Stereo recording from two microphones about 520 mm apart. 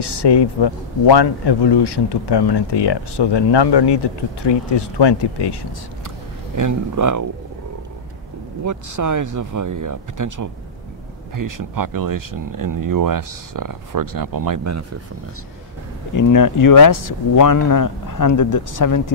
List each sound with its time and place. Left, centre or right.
0.0 s speech: left
6.5 s speech: right
8.6 s speech: right
16.2 s speech: left